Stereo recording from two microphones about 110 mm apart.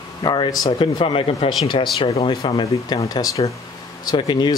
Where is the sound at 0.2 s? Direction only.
40° left (ahead or behind).